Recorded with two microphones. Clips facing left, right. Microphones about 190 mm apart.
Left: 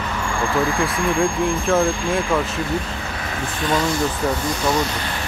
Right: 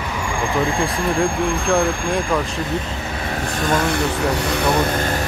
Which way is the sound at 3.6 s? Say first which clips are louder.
Even; 50° right (ahead or behind).